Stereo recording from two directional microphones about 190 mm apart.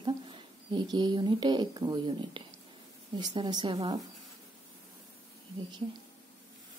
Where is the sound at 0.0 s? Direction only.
25° right (ahead or behind).